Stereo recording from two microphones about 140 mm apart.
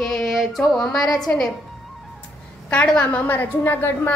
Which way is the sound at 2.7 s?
10° left (ahead or behind).